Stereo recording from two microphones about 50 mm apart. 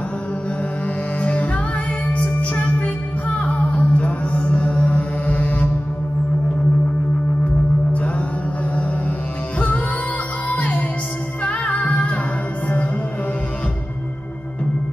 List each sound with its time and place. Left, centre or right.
1.2 s music: left
10.5 s music: left